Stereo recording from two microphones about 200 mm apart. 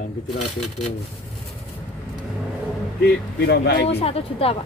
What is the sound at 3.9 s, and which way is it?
Speech, 30° left (ahead or behind).